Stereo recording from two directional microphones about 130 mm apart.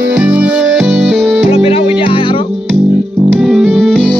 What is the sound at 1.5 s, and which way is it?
Music, 45° left (ahead or behind).